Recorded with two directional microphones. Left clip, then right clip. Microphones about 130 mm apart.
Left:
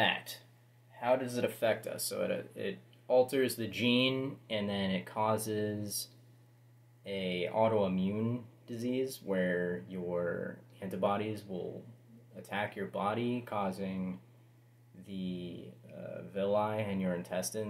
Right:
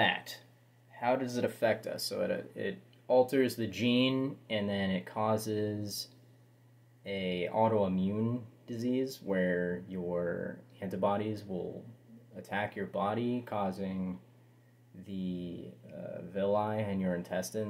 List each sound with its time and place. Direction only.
0.9 s speech: 35° left (ahead or behind)
7.1 s speech: 30° left (ahead or behind)
12.4 s speech: 30° left (ahead or behind)
15.3 s speech: 30° left (ahead or behind)